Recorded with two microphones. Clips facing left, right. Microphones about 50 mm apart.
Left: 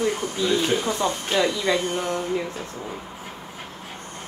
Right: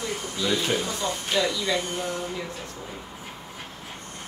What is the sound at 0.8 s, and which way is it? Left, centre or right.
Speech, left.